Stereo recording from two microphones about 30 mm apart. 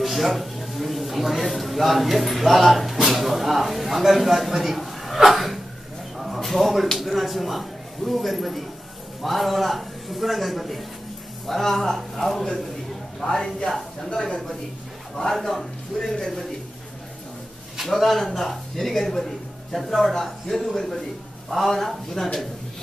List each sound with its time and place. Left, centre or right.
0.0 s a sound: centre
1.5 s speech: centre
6.1 s a sound: centre
6.5 s a man's voice: centre
13.7 s speech: centre
14.1 s speech: left
15.3 s a man's voice: centre
17.8 s a man's voice: centre